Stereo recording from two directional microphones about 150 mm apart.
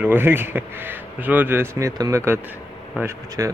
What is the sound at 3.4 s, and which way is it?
Speech, 20° right (ahead or behind).